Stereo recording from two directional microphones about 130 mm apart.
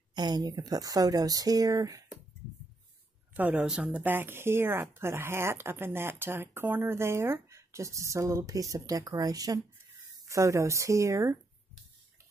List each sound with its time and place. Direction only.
0.1 s speech: 35° right (ahead or behind)
3.3 s speech: 10° right (ahead or behind)